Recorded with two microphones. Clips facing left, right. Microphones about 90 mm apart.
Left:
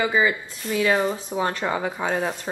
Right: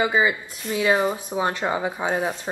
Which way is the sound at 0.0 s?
20° right (ahead or behind).